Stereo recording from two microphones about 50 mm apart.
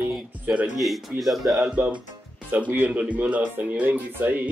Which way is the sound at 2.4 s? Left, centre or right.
Right.